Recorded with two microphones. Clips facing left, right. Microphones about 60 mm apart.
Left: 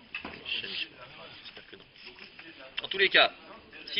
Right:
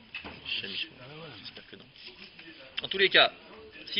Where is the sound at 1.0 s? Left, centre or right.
Centre.